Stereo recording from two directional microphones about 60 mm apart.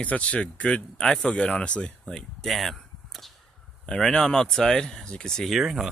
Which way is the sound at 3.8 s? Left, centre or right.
Centre.